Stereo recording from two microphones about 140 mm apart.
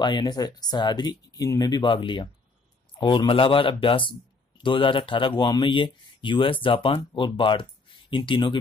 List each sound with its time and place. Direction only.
0.0 s speech: 30° left (ahead or behind)